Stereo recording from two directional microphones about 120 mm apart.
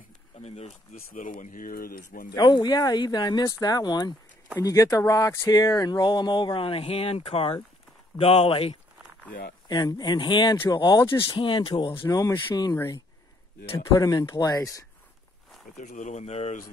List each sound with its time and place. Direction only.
0.4 s speech: 65° left (ahead or behind); by 1.5 s 90° left
2.3 s speech: 35° left (ahead or behind)
6.6 s speech: 55° left (ahead or behind)
9.7 s speech: 35° left (ahead or behind)
12.0 s speech: 25° left (ahead or behind)
15.8 s speech: 85° left; by 16.5 s 65° left (ahead or behind)